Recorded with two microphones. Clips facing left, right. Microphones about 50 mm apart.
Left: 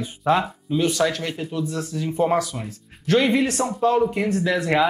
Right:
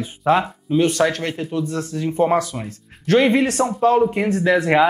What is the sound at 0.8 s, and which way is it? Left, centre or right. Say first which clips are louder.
Speech: right 3 dB; right.